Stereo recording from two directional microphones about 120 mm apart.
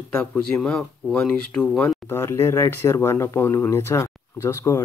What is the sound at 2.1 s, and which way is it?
Speech, 20° left (ahead or behind).